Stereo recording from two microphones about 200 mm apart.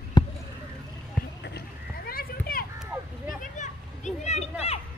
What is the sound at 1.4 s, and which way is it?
Horse, 50° left (ahead or behind).